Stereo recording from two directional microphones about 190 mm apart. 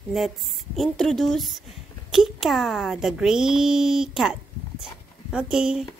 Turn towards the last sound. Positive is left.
turn(degrees=-5)  # may be behind; listen again after turning